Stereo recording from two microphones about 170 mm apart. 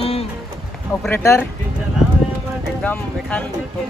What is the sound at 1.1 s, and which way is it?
Speech, 15° left (ahead or behind).